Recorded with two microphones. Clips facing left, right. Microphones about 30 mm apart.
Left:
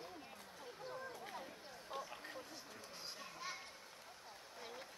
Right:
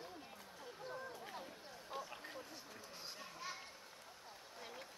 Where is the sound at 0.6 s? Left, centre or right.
Centre.